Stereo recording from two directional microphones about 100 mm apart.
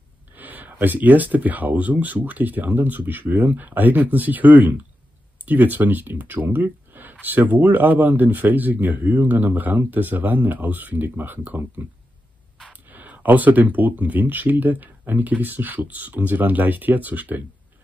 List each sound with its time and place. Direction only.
0.3 s speech: 15° right (ahead or behind)